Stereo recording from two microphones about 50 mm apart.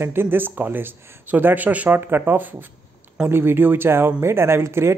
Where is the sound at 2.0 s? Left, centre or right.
Right.